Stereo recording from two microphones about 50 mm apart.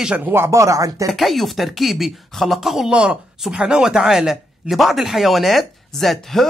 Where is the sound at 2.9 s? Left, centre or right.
Right.